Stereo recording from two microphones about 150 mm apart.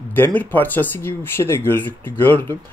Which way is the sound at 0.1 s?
10° left (ahead or behind).